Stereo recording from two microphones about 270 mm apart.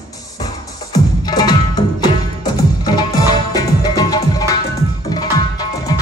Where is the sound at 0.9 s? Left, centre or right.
Centre.